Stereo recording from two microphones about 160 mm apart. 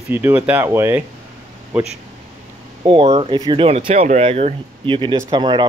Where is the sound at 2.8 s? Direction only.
35° right (ahead or behind).